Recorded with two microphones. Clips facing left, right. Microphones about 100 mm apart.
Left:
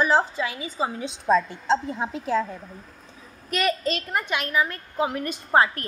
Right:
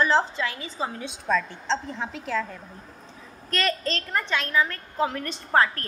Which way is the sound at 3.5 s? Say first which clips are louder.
Left 2 dB; 10° left (ahead or behind).